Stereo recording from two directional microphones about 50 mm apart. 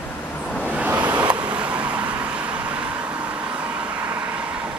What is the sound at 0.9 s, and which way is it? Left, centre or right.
Vehicle, right.